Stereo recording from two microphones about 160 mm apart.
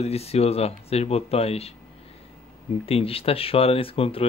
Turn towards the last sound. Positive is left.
turn(degrees=35)  # may be behind; listen again after turning